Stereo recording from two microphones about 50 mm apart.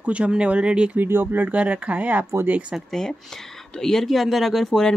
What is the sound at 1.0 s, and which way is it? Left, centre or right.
Speech, right.